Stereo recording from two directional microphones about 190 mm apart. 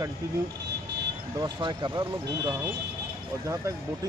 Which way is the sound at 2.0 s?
15° right (ahead or behind).